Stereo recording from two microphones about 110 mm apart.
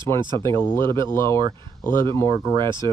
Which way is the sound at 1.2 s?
45° right (ahead or behind).